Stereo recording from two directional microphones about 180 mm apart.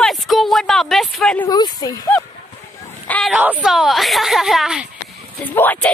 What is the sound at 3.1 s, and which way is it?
Speech, centre (ahead or behind).